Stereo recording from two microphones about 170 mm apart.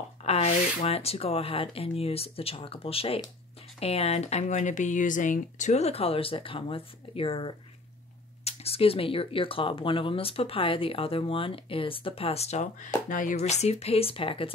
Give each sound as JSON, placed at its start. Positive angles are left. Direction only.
{"t": 0.2, "sound": "speech", "side_deg": 40}